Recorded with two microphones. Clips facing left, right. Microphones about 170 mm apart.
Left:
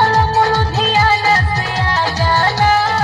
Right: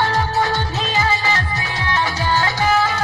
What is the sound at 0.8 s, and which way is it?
Music, 85° left.